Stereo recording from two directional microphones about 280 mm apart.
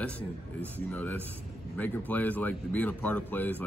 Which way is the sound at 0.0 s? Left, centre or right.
Centre.